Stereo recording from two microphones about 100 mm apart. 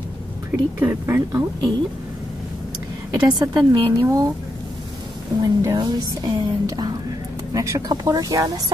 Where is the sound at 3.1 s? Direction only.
45° right (ahead or behind).